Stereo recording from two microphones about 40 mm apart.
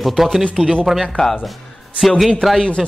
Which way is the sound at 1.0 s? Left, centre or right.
Centre.